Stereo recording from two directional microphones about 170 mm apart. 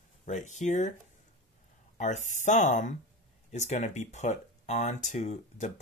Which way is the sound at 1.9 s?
45° left (ahead or behind).